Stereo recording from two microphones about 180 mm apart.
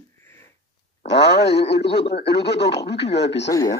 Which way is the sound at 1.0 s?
65° left (ahead or behind).